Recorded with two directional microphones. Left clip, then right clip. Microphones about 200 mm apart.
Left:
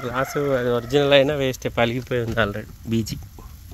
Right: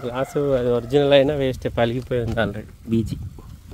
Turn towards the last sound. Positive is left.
turn(degrees=-5)  # may be behind; listen again after turning